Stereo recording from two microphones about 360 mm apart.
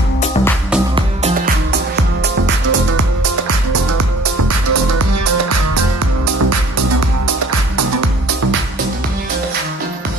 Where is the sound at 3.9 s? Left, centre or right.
Right.